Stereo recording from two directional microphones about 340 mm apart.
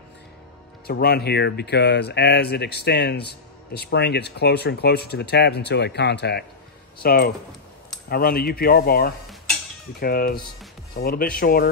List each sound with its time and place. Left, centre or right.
0.8 s speech: left